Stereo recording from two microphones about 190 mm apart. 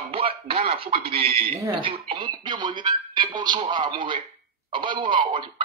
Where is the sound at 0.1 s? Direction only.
30° right (ahead or behind).